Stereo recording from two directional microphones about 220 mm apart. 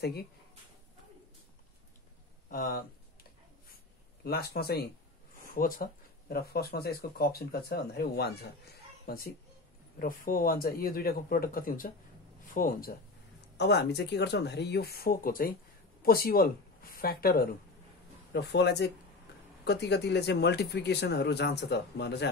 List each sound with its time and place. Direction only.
0.0 s speech: 45° left (ahead or behind)
2.5 s speech: 40° left (ahead or behind)
4.2 s a child's voice: 45° left (ahead or behind)
13.6 s speech: 50° left (ahead or behind)